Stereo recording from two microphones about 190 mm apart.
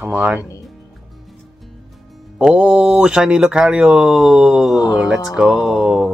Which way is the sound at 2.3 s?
5° right (ahead or behind).